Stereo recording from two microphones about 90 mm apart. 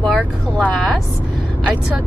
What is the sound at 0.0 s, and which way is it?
Vehicle, 15° left (ahead or behind).